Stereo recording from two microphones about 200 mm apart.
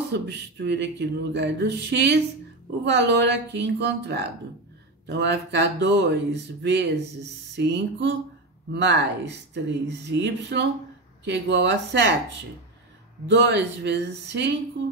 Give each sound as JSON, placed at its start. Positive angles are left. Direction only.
{"t": 0.1, "sound": "speech", "side_deg": -60}
{"t": 13.3, "sound": "speech", "side_deg": -60}